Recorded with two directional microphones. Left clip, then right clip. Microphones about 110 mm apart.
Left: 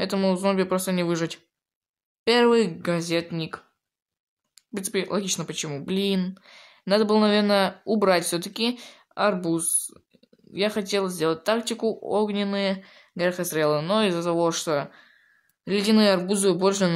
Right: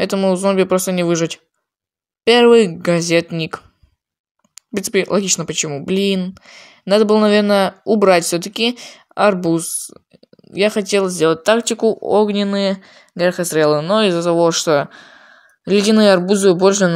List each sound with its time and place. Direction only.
0.1 s speech: 30° right (ahead or behind)